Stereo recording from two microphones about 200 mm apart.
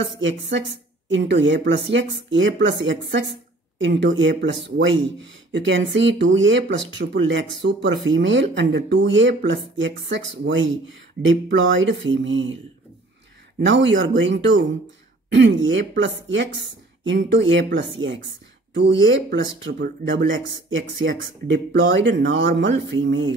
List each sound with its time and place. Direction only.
0.2 s speech: 65° right (ahead or behind)
13.7 s speech: 65° right (ahead or behind)
18.7 s speech: 65° right (ahead or behind)